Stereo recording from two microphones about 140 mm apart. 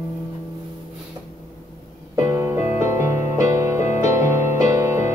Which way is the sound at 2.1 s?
20° right (ahead or behind).